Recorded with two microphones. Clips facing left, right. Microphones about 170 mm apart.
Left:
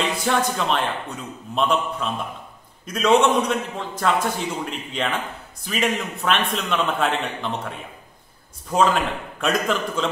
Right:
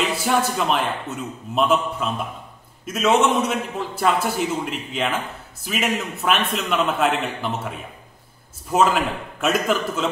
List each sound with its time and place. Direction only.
0.1 s a man's voice: 5° right (ahead or behind)
8.7 s a man's voice: 5° right (ahead or behind)